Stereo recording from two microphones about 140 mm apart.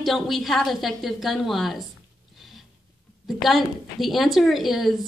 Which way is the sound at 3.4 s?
Centre (ahead or behind).